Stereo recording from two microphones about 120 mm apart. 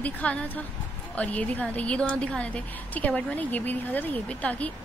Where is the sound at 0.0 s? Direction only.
10° left (ahead or behind).